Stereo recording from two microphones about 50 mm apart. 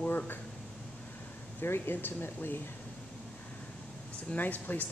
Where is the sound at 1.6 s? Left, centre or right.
Left.